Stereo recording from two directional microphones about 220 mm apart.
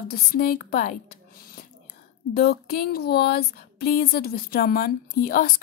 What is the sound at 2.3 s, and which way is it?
A woman's voice, 45° left (ahead or behind).